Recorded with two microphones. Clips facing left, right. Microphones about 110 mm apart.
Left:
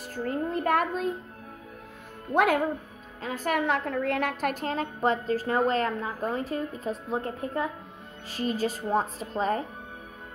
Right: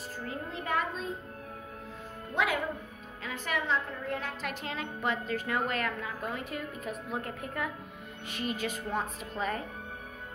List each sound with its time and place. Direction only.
0.1 s a woman's voice: 45° left (ahead or behind)
2.3 s a woman's voice: 50° left (ahead or behind)
3.2 s a woman's voice: 40° left (ahead or behind)